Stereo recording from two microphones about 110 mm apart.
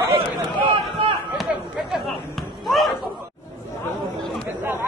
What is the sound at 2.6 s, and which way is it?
Slam, centre (ahead or behind).